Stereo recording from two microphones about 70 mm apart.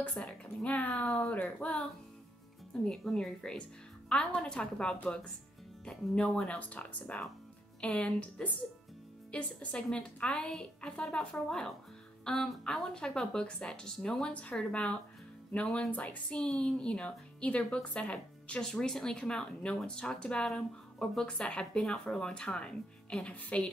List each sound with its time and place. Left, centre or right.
0.1 s speech: centre
3.0 s speech: centre